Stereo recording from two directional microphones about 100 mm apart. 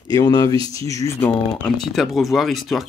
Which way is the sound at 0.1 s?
40° left (ahead or behind).